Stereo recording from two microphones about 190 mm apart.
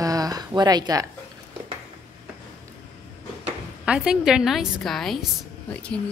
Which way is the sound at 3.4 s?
5° right (ahead or behind).